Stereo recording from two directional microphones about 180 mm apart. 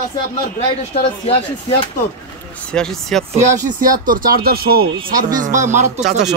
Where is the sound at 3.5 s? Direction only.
45° right (ahead or behind).